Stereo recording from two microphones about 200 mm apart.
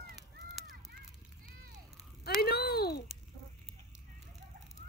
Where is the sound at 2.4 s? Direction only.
50° left (ahead or behind).